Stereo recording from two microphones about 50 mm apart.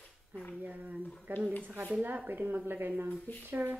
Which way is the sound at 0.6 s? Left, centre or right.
Right.